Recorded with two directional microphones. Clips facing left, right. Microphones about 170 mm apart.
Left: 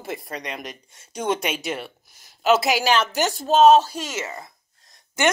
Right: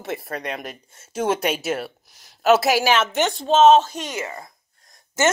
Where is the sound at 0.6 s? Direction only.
5° right (ahead or behind).